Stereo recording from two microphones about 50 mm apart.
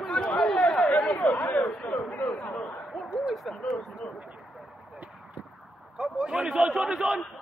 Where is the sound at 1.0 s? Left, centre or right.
Left.